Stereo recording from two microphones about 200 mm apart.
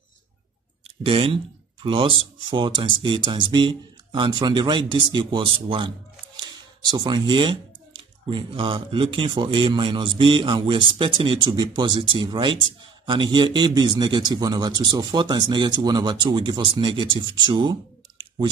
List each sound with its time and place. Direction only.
1.0 s speech: 25° right (ahead or behind)